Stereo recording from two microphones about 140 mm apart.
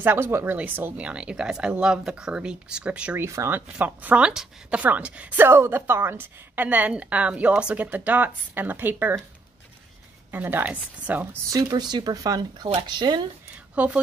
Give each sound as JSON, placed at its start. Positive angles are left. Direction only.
{"t": 0.0, "sound": "a woman's voice", "side_deg": -15}
{"t": 3.3, "sound": "a woman's voice", "side_deg": -20}
{"t": 10.3, "sound": "a woman's voice", "side_deg": -15}
{"t": 11.5, "sound": "speech", "side_deg": -30}
{"t": 13.8, "sound": "a woman's voice", "side_deg": -10}